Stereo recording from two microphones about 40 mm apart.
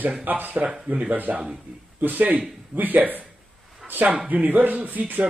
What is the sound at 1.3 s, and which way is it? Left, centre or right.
A man's voice, right.